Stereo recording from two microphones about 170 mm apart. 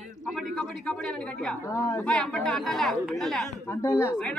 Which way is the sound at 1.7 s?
15° left (ahead or behind).